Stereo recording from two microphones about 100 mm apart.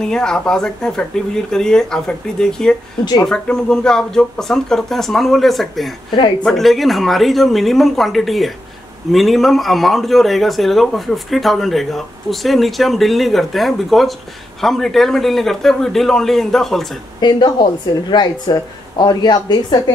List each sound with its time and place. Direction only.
0.0 s a man's voice: 5° left (ahead or behind)
17.2 s a woman's voice: 50° left (ahead or behind)